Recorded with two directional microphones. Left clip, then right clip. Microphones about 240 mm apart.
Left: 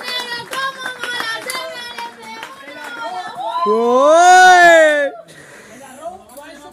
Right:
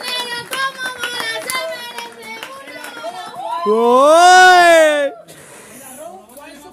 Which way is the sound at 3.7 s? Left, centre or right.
Centre.